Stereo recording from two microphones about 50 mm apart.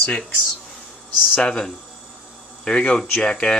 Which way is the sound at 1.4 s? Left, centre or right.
Centre.